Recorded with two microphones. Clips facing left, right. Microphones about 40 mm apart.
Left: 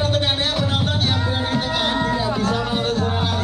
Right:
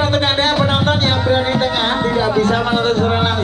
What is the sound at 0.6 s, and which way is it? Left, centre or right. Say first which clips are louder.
Music: right 7 dB; right.